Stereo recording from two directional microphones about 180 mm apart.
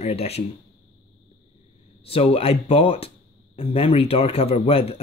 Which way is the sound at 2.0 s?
35° left (ahead or behind).